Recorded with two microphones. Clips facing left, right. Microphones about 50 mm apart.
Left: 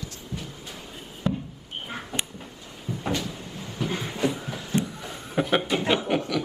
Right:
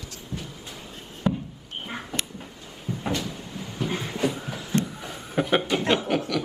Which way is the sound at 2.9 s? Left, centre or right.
Right.